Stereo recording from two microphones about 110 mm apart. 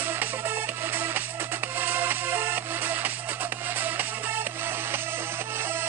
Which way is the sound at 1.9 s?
20° right (ahead or behind).